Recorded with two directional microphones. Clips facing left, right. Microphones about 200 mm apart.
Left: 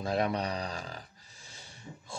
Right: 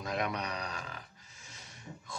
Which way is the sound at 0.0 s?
30° left (ahead or behind).